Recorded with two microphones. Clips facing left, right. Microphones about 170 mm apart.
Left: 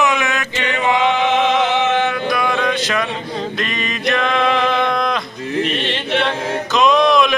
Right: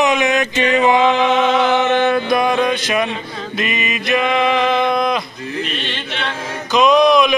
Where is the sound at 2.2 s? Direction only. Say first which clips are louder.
Right 3 dB; 20° right (ahead or behind).